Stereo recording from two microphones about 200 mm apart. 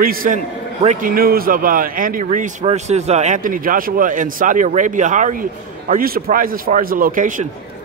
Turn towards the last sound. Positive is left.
turn(degrees=-40)  # may be behind; listen again after turning